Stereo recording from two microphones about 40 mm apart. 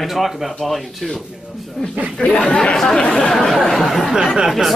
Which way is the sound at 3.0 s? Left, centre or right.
Left.